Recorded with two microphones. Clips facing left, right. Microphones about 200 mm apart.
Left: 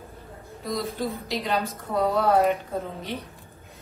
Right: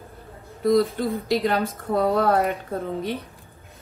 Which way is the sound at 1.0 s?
50° right (ahead or behind).